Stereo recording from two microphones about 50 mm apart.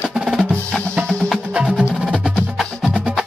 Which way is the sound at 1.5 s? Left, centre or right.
Right.